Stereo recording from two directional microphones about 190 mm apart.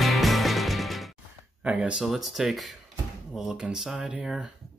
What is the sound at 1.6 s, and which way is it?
Speech, 5° right (ahead or behind).